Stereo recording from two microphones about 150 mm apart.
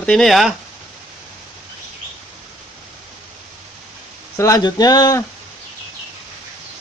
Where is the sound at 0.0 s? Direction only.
Centre (ahead or behind).